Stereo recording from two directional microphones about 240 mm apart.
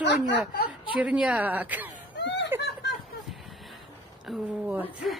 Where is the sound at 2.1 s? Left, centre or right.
Left.